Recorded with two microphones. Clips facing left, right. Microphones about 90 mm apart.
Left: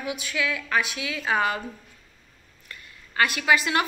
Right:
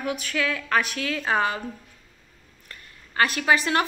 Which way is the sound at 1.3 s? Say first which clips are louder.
Even; 30° right (ahead or behind).